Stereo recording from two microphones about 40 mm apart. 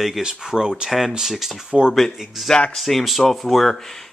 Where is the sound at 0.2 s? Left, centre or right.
Centre.